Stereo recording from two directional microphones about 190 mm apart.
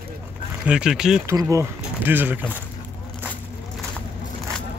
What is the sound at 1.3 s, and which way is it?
Speech, 15° right (ahead or behind).